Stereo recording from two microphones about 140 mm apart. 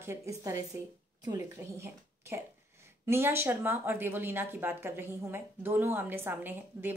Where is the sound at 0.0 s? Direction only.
20° right (ahead or behind).